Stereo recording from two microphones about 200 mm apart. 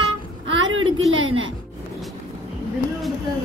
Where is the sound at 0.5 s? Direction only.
75° right (ahead or behind).